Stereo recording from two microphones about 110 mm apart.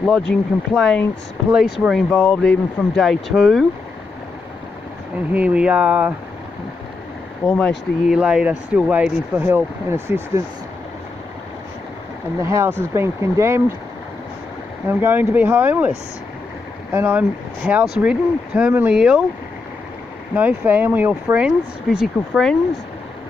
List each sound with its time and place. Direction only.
0.0 s speech: centre (ahead or behind)
1.5 s speech: 5° right (ahead or behind)
5.3 s speech: 10° right (ahead or behind)
7.4 s speech: 15° left (ahead or behind)
8.1 s speech: 10° right (ahead or behind)
12.4 s speech: 25° right (ahead or behind)
14.9 s speech: 20° right (ahead or behind)
16.9 s speech: 15° right (ahead or behind)
20.3 s speech: 15° right (ahead or behind); by 22.6 s centre (ahead or behind)